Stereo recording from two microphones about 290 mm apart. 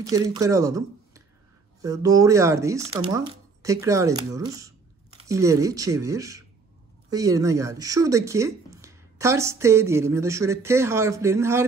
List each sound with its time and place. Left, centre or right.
0.1 s speech: centre